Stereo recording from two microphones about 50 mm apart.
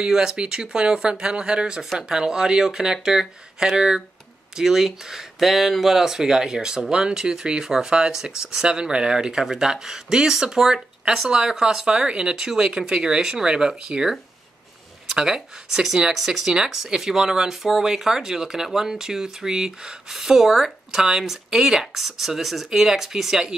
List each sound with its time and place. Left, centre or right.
0.0 s speech: centre